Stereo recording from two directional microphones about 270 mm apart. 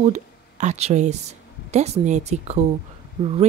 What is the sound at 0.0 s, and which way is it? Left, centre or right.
Speech, right.